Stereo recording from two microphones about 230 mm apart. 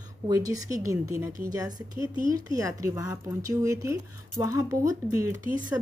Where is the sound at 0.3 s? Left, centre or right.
Centre.